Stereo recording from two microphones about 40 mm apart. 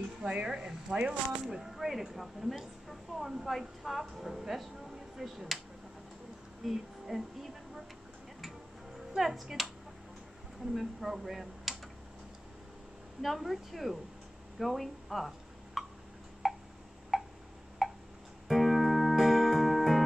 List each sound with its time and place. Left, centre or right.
0.2 s speech: right
0.7 s a woman's voice: centre
6.6 s speech: centre
9.1 s a woman's voice: centre
10.7 s speech: centre
13.2 s speech: centre
16.4 s a sound: centre
17.1 s tick: centre
18.5 s music: centre